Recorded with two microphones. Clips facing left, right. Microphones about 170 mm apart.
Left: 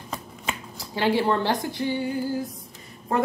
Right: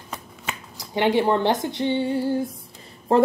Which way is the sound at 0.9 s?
20° right (ahead or behind).